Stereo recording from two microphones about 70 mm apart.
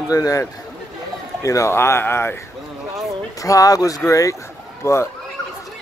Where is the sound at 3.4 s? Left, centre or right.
Left.